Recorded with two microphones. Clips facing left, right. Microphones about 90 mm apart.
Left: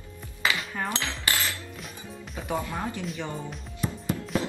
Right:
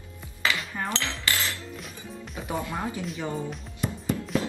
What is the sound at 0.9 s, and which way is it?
Dishes, 20° left (ahead or behind).